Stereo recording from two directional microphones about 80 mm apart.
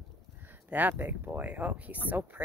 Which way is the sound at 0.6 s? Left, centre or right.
Right.